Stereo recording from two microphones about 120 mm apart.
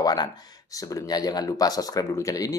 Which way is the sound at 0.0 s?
35° left (ahead or behind).